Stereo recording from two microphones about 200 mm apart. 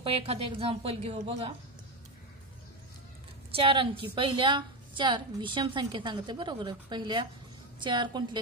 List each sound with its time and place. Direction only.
0.0 s a woman's voice: 30° right (ahead or behind)
3.5 s a woman's voice: 25° right (ahead or behind)